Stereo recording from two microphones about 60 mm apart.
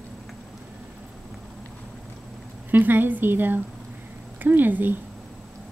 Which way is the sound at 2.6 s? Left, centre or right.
Right.